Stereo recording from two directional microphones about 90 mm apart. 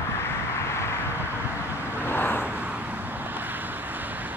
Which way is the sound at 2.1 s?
25° left (ahead or behind).